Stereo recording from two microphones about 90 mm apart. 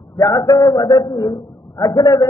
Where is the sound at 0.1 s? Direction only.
35° left (ahead or behind).